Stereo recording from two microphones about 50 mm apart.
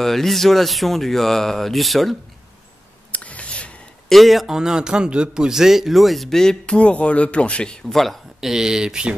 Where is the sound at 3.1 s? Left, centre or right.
Left.